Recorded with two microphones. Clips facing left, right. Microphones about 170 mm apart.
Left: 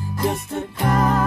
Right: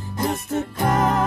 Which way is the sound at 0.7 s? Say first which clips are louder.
Left 1 dB; 20° right (ahead or behind).